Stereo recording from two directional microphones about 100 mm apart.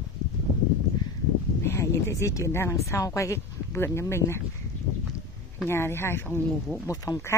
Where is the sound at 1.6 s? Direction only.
25° left (ahead or behind).